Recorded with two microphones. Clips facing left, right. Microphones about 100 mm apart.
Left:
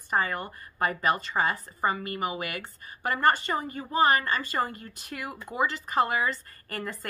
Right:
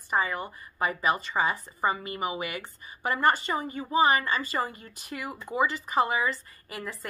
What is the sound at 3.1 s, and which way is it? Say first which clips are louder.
A woman's voice: left 1 dB; 15° right (ahead or behind).